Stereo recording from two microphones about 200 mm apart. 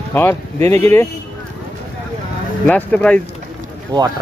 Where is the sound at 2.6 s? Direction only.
5° left (ahead or behind).